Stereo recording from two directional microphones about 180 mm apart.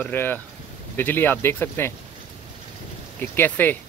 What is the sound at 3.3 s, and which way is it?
Speech, 10° left (ahead or behind).